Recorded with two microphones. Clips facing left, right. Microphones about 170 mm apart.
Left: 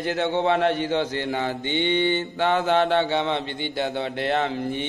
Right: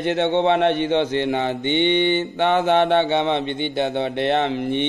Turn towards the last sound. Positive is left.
turn(degrees=-20)  # may be behind; listen again after turning